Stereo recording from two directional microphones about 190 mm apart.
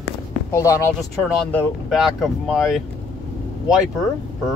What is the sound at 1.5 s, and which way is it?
Speech, 5° left (ahead or behind).